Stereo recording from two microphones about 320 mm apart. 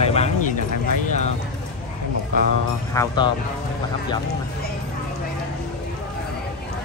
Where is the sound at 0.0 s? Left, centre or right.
Centre.